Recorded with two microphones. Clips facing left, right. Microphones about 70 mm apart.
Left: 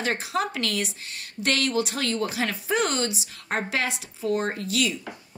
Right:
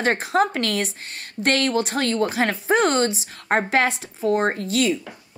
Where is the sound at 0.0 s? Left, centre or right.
Right.